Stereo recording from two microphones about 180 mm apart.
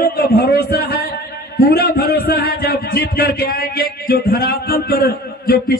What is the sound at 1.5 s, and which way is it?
A man's voice, 55° left (ahead or behind).